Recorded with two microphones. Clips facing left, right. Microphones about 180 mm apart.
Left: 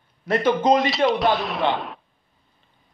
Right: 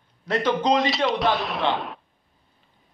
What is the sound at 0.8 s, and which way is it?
Speech, centre (ahead or behind).